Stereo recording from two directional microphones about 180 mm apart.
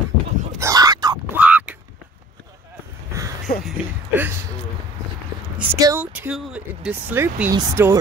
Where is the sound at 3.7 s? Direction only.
10° right (ahead or behind).